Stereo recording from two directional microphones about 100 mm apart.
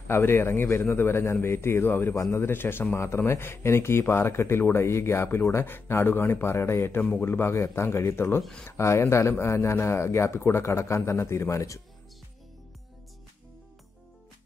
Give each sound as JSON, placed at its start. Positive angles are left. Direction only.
{"t": 0.1, "sound": "speech", "side_deg": 25}
{"t": 8.4, "sound": "speech", "side_deg": 5}
{"t": 8.6, "sound": "speech", "side_deg": 30}